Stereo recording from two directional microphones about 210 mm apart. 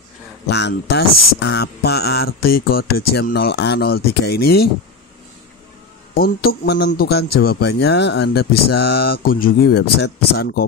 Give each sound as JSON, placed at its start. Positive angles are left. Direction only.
{"t": 0.5, "sound": "speech", "side_deg": 55}
{"t": 6.1, "sound": "speech", "side_deg": 45}